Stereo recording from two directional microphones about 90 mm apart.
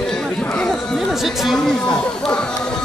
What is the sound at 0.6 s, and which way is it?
Speech, centre (ahead or behind).